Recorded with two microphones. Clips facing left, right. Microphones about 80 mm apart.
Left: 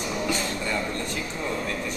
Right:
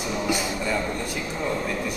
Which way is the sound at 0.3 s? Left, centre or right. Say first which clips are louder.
Right 2 dB; centre.